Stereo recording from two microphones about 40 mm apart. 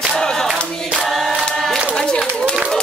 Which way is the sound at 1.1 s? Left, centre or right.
Centre.